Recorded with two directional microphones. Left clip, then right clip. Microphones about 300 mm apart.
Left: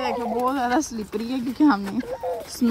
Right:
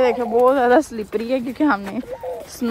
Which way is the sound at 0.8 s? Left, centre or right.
Centre.